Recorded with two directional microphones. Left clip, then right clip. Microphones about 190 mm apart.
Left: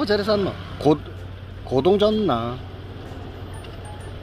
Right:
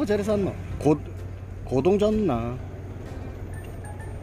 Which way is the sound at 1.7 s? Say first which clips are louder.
Left 4 dB; centre (ahead or behind).